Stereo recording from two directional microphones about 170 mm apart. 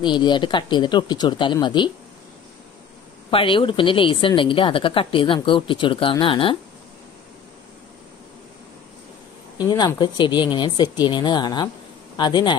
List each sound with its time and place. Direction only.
0.0 s speech: 25° left (ahead or behind)
3.3 s a woman's voice: 30° left (ahead or behind)
9.6 s speech: 25° left (ahead or behind)